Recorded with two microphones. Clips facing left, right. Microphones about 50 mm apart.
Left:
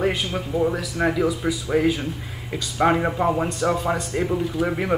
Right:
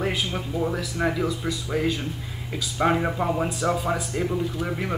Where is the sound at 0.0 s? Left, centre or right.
Centre.